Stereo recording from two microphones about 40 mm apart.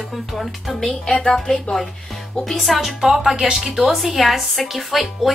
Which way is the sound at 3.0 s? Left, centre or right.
Centre.